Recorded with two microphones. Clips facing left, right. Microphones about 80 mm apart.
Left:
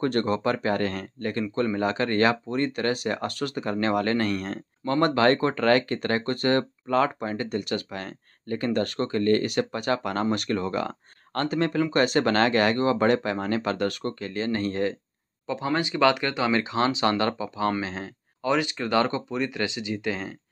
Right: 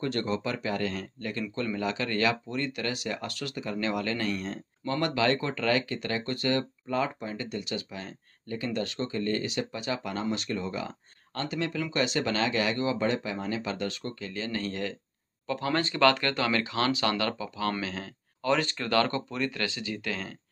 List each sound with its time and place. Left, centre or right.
0.0 s speech: left
6.9 s speech: left
15.4 s speech: centre
18.4 s speech: centre